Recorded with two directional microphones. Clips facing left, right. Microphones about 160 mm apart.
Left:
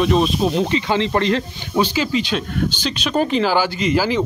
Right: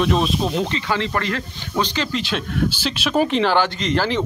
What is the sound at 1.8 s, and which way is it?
Speech, 5° left (ahead or behind).